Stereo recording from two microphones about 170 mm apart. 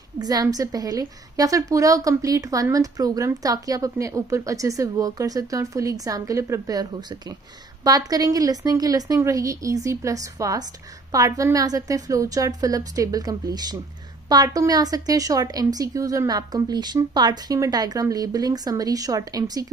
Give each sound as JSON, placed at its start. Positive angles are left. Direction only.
{"t": 0.2, "sound": "a woman's voice", "side_deg": -20}